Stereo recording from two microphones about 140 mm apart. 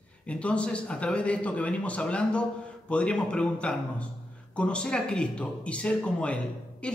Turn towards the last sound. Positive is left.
turn(degrees=10)  # may be behind; listen again after turning